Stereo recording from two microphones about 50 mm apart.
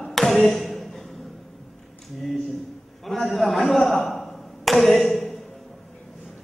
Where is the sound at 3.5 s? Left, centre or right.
Centre.